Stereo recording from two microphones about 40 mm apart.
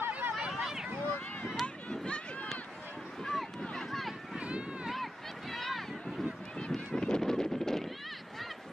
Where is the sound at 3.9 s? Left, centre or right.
Centre.